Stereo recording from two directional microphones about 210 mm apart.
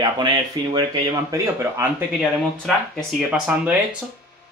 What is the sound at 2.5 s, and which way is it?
Speech, 5° left (ahead or behind).